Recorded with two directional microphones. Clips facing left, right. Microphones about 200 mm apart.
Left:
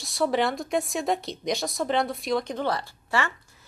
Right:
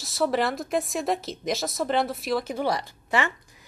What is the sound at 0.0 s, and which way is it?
A woman's voice, centre (ahead or behind).